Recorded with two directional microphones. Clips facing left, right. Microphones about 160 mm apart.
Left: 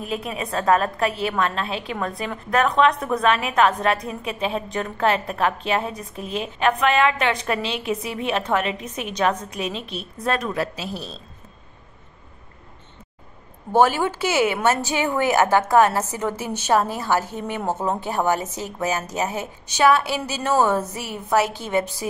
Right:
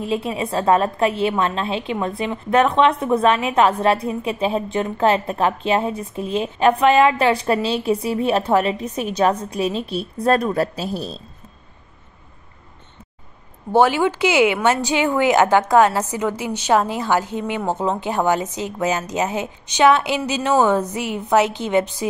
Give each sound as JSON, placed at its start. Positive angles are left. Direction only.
{"t": 0.0, "sound": "a woman's voice", "side_deg": -25}
{"t": 13.8, "sound": "a woman's voice", "side_deg": -15}